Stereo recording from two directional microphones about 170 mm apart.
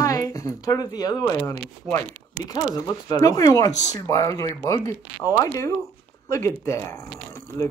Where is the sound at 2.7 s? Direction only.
20° left (ahead or behind).